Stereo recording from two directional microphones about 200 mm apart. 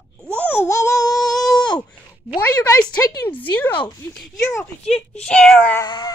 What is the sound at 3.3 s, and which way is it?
Speech, 10° left (ahead or behind).